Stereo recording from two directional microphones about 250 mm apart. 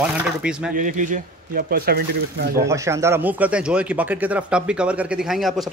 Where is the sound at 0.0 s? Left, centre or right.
Centre.